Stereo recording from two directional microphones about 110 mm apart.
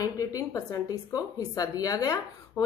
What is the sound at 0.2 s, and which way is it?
Speech, 30° left (ahead or behind).